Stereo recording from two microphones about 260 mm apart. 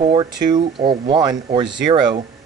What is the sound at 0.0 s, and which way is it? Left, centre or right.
Speech, centre.